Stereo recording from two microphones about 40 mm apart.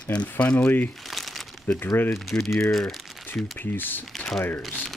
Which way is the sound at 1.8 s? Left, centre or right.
Left.